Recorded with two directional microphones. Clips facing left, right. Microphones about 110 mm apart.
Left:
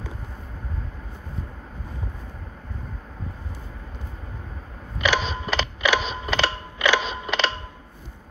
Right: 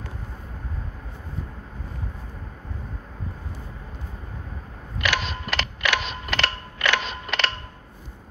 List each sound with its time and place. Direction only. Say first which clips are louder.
5.1 s mechanisms: left 4 dB; 15° left (ahead or behind)